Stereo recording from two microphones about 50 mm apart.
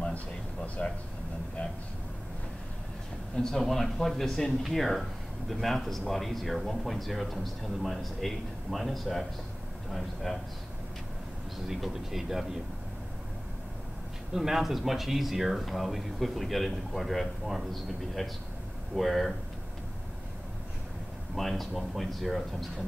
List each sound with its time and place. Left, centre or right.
0.8 s speech: left
3.3 s speech: centre
11.6 s speech: centre
14.3 s speech: centre
18.9 s speech: centre
21.4 s speech: centre